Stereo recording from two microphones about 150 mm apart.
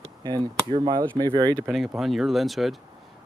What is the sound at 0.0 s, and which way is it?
Speech, 25° right (ahead or behind).